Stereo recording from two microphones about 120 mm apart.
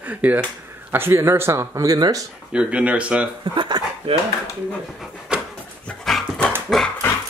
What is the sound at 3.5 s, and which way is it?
Speech, 40° right (ahead or behind).